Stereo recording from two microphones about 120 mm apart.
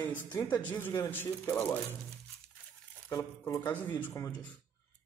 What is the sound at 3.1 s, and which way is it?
Speech, 25° left (ahead or behind).